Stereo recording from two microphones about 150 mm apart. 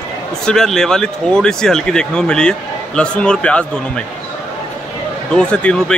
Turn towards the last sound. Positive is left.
turn(degrees=5)  # may be behind; listen again after turning